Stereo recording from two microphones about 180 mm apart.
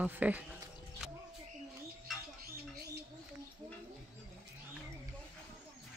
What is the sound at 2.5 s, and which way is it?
Bird, 60° right (ahead or behind).